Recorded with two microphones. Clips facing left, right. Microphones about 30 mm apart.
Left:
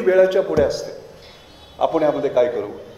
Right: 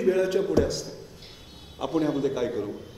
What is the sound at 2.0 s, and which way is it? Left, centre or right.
Speech, left.